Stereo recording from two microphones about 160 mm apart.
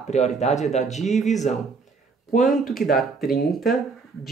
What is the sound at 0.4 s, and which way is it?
Speech, 45° left (ahead or behind).